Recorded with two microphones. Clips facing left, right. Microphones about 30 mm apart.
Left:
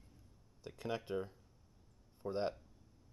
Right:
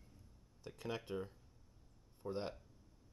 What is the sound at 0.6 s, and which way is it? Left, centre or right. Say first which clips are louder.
Speech: left 3 dB; centre.